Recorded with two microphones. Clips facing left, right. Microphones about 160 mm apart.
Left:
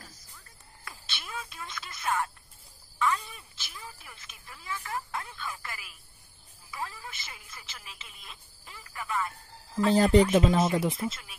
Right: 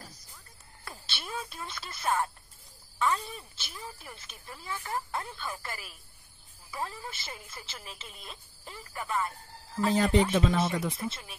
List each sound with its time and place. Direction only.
0.8 s speech: 35° right (ahead or behind)
9.8 s speech: 35° left (ahead or behind)
10.5 s speech: 25° left (ahead or behind)